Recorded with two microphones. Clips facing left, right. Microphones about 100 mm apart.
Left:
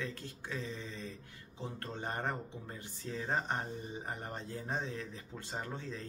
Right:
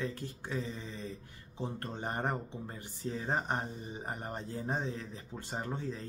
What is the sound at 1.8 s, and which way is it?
Speech, 15° right (ahead or behind).